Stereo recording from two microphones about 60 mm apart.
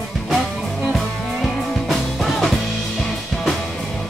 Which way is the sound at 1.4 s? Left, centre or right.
Centre.